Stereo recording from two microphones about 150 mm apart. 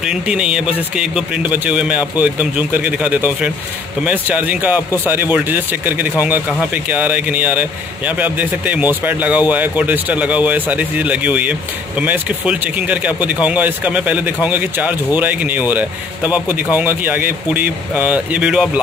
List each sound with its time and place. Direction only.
0.0 s speech: 5° right (ahead or behind)